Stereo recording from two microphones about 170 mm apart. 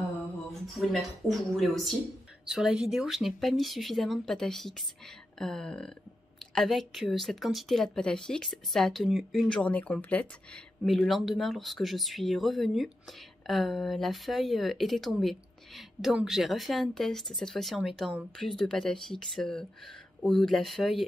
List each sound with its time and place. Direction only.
0.5 s speech: centre (ahead or behind)